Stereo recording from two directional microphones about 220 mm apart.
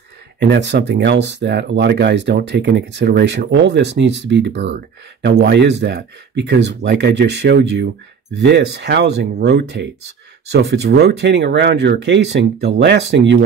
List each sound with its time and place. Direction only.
0.4 s speech: 50° right (ahead or behind)